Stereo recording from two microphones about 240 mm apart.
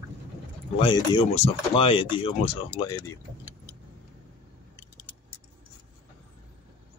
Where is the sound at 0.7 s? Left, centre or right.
Left.